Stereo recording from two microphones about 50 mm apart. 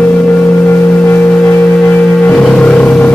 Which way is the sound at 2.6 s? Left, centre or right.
Left.